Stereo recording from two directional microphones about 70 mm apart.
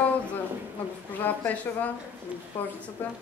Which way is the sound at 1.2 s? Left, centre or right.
Left.